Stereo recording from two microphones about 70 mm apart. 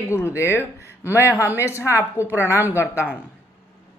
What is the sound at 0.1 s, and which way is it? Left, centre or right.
Speech, left.